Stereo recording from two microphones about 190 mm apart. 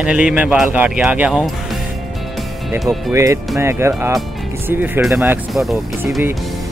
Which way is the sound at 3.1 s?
15° right (ahead or behind).